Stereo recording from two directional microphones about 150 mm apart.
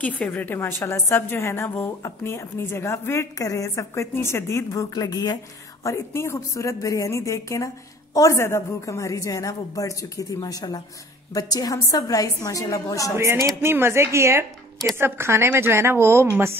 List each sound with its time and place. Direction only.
0.0 s a woman's voice: 10° left (ahead or behind)
13.1 s a woman's voice: 20° right (ahead or behind)